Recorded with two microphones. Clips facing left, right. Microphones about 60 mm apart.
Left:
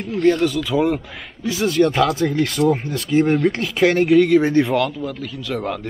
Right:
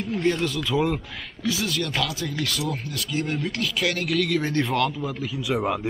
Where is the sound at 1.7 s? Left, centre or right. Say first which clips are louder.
Left 11 dB; left.